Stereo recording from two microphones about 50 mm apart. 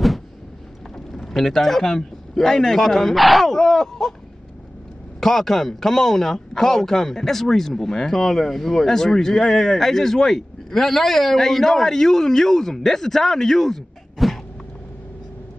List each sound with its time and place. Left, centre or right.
0.9 s speech: centre
5.2 s speech: centre